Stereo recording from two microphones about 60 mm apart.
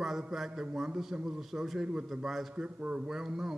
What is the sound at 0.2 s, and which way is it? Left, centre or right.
A man's voice, centre.